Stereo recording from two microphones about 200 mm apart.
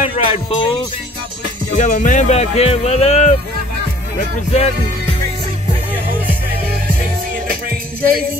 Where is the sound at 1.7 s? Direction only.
40° left (ahead or behind).